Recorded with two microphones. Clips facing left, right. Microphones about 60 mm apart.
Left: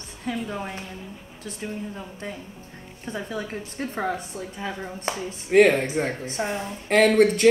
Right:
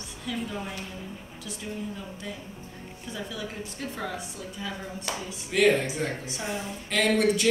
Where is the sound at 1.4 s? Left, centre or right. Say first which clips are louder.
Left 3 dB; left.